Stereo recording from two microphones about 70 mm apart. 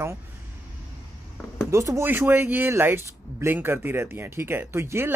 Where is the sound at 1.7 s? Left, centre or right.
Right.